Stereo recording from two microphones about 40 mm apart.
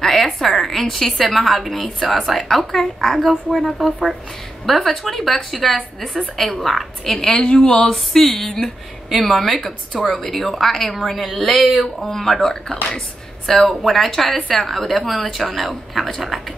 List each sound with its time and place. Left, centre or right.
0.0 s a woman's voice: centre
7.2 s a woman's voice: centre
7.9 s a woman's voice: centre